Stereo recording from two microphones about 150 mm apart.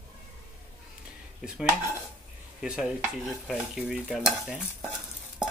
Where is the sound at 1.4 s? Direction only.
5° right (ahead or behind).